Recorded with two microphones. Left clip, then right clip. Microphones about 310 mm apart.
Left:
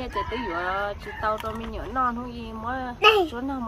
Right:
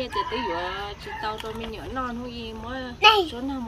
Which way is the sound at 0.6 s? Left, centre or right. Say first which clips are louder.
Left 3 dB; centre.